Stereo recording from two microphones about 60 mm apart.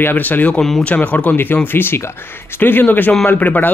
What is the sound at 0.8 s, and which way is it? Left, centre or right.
Speech, left.